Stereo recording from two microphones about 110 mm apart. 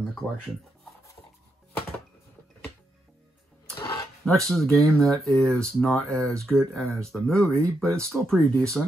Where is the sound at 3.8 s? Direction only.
40° left (ahead or behind).